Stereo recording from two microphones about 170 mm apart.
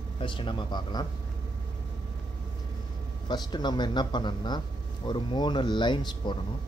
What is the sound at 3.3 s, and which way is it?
Speech, 25° left (ahead or behind).